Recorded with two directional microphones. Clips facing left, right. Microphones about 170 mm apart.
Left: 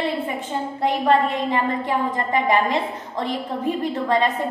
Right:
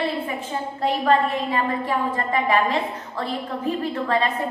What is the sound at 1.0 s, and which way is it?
A woman's voice, 20° left (ahead or behind).